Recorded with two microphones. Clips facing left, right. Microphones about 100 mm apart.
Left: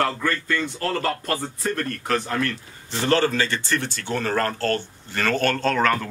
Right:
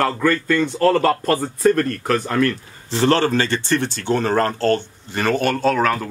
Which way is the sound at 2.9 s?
30° right (ahead or behind).